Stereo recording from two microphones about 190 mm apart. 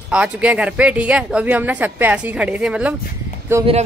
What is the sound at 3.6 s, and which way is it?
Speech, 15° right (ahead or behind).